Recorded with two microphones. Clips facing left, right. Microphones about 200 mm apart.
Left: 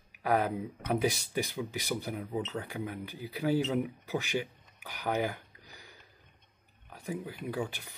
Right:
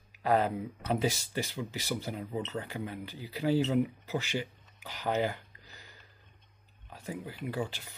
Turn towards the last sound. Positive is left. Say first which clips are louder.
# even
turn(degrees=10)  # may be behind; listen again after turning